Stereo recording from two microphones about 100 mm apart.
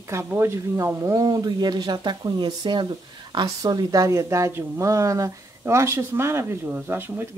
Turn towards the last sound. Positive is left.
turn(degrees=-20)  # may be behind; listen again after turning